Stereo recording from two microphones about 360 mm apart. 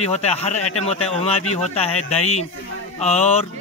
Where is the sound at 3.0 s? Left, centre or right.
Centre.